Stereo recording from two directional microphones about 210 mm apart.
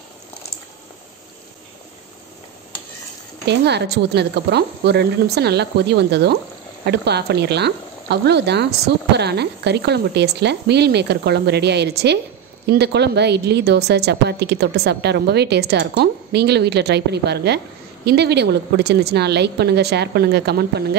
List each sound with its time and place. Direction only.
3.4 s speech: 55° right (ahead or behind)